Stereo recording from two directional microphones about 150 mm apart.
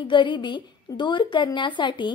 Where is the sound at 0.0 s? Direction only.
30° left (ahead or behind).